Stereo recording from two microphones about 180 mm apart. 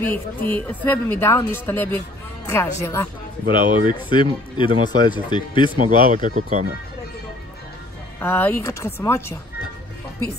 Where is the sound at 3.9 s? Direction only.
25° left (ahead or behind).